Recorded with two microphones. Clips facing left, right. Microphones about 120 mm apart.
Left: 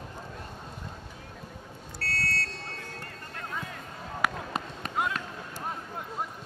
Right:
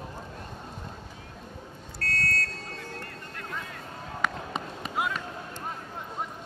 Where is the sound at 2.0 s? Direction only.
30° left (ahead or behind).